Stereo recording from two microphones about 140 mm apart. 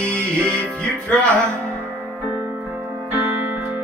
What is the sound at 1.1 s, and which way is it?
Music, 10° left (ahead or behind).